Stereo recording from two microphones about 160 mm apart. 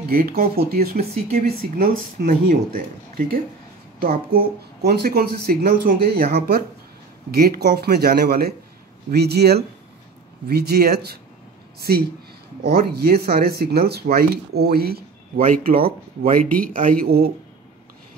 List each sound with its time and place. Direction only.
0.1 s speech: 65° right (ahead or behind)
4.0 s speech: 65° right (ahead or behind)
9.1 s speech: 90° right
12.6 s speech: 80° right